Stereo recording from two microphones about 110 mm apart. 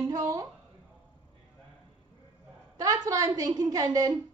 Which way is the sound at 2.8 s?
30° right (ahead or behind).